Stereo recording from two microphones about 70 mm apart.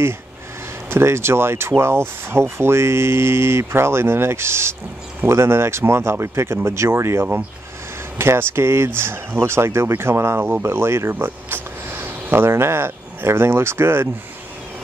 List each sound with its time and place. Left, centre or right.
0.8 s speech: right